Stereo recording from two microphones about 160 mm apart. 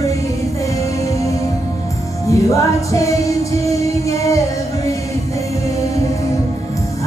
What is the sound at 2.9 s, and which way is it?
Music, 20° left (ahead or behind).